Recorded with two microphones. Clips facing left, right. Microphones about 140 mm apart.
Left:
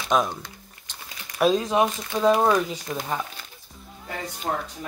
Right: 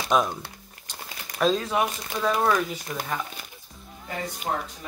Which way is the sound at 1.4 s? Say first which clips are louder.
Left 3 dB; 15° left (ahead or behind).